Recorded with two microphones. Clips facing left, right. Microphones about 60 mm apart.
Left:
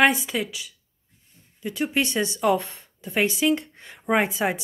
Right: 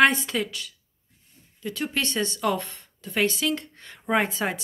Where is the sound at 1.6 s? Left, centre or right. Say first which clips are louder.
Left 4 dB; centre.